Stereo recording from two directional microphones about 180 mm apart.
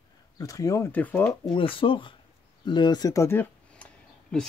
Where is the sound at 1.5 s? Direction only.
30° left (ahead or behind).